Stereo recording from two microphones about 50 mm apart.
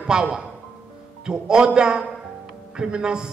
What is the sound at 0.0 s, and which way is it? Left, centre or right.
A man's voice, centre.